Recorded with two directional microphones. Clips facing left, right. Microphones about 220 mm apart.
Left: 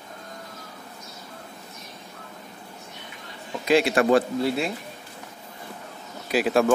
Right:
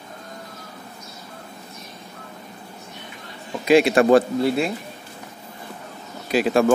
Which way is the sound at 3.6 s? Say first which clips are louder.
Right 5 dB; 15° right (ahead or behind).